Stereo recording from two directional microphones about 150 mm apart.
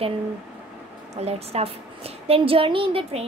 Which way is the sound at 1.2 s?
40° right (ahead or behind).